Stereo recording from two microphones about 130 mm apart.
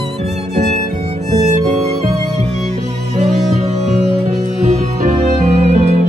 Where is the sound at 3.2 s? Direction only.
60° right (ahead or behind).